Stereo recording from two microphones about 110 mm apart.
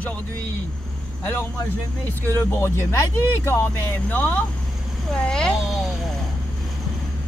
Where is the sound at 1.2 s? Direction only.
15° left (ahead or behind); by 6.0 s centre (ahead or behind).